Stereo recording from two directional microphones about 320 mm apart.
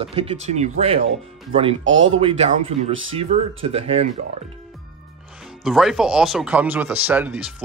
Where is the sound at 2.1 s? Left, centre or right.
Centre.